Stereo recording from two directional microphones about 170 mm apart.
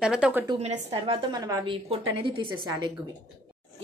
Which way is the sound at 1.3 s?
20° right (ahead or behind).